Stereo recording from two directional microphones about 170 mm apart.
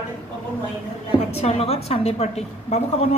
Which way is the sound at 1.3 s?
35° left (ahead or behind).